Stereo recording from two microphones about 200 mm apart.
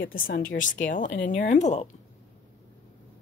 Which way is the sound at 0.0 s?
45° left (ahead or behind).